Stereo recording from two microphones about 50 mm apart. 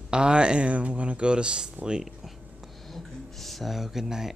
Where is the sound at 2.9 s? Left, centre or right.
Centre.